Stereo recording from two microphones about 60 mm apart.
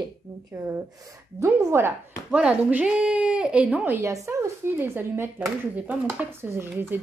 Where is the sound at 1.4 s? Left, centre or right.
Right.